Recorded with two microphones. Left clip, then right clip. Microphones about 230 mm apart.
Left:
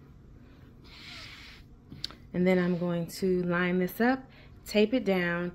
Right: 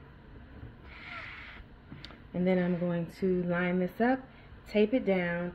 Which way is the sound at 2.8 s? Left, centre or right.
Centre.